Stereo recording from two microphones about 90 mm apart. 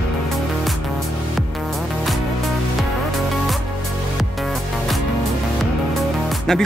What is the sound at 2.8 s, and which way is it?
Music, centre (ahead or behind).